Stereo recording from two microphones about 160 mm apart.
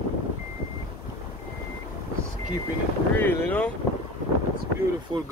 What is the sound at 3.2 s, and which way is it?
Speech, 10° left (ahead or behind).